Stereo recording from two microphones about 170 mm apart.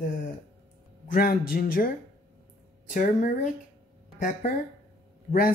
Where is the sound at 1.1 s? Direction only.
60° left (ahead or behind).